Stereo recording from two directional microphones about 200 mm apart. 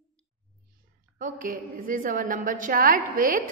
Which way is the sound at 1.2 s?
40° right (ahead or behind).